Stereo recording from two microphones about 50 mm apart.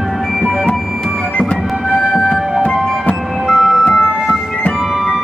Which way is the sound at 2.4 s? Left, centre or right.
Centre.